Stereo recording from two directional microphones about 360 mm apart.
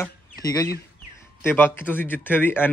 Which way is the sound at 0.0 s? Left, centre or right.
Centre.